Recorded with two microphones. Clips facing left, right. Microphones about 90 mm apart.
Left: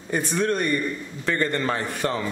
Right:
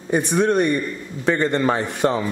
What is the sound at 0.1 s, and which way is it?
A man's voice, 20° right (ahead or behind).